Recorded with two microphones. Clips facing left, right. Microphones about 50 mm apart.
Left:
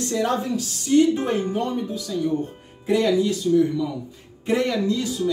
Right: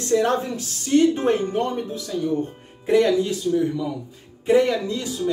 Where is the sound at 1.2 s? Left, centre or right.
Right.